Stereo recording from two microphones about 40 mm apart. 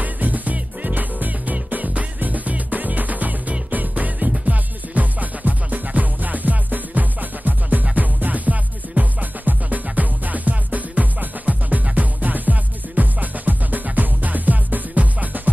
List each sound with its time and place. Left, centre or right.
0.0 s music: right